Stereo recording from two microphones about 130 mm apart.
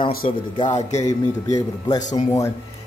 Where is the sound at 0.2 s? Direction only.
55° left (ahead or behind).